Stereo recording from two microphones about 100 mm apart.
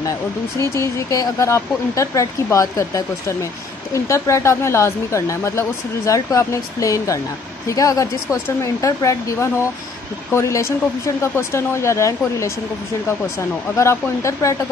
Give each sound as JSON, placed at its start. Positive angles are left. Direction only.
{"t": 0.6, "sound": "speech", "side_deg": 30}
{"t": 13.7, "sound": "speech", "side_deg": 30}